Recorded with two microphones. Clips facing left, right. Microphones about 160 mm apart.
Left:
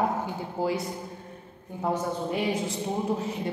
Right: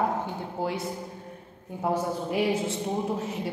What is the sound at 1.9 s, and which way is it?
Speech, 5° right (ahead or behind).